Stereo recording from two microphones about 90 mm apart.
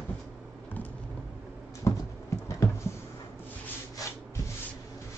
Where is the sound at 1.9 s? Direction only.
35° left (ahead or behind).